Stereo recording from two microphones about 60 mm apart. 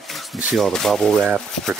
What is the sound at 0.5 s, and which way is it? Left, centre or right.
Speech, centre.